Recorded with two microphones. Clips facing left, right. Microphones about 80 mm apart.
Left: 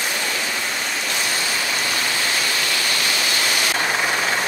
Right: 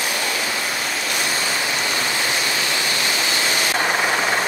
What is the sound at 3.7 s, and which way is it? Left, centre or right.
Vehicle, centre.